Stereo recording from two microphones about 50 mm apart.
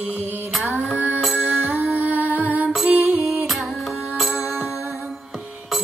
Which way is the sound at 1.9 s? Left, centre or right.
Right.